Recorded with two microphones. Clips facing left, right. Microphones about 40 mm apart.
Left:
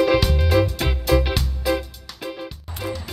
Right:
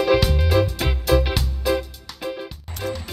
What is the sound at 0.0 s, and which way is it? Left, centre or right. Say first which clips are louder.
Music: even; centre.